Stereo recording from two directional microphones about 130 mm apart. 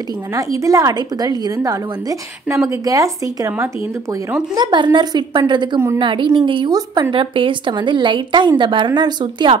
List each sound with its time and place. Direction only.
0.3 s a woman's voice: 25° right (ahead or behind)
3.5 s speech: 15° right (ahead or behind)
4.6 s speech: 35° right (ahead or behind)